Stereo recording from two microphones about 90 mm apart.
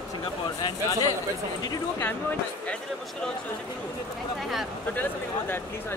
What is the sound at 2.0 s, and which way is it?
Speech, 20° left (ahead or behind).